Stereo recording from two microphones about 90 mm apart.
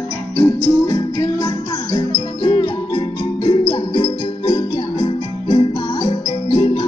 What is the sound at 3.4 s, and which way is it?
Music, 80° left.